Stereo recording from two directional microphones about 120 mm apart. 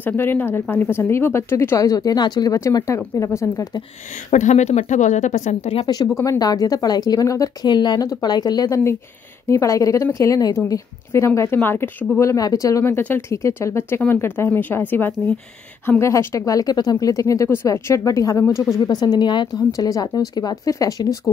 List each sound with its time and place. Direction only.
0.0 s speech: 15° left (ahead or behind)
4.3 s speech: 90° left
5.9 s speech: 30° left (ahead or behind)
12.2 s speech: 25° left (ahead or behind)